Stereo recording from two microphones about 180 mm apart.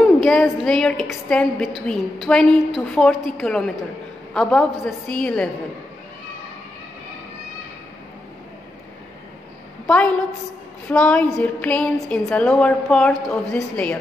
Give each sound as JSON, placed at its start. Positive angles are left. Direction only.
{"t": 0.2, "sound": "a woman's voice", "side_deg": 0}
{"t": 9.8, "sound": "a woman's voice", "side_deg": 5}